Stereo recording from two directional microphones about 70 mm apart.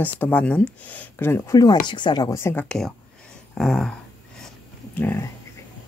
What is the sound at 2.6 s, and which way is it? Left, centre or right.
Speech, centre.